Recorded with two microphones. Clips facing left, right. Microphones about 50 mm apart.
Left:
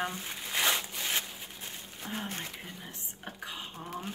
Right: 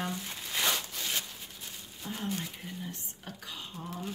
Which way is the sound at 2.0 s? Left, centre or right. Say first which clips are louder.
Right 2 dB; left.